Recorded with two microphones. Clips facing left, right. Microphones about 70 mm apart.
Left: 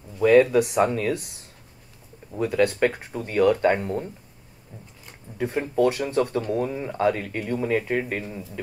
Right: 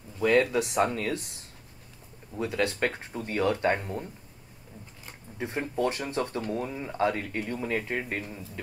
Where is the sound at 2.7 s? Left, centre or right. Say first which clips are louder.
Left 6 dB; centre.